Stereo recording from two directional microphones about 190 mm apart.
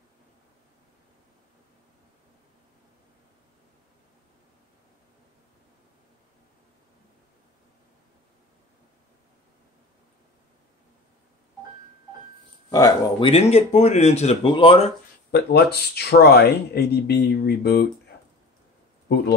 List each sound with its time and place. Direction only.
12.7 s speech: 20° left (ahead or behind)
13.3 s speech: 35° left (ahead or behind)
15.3 s speech: 60° left (ahead or behind)